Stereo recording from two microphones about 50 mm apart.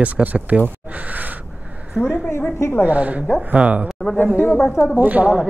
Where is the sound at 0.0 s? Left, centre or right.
Right.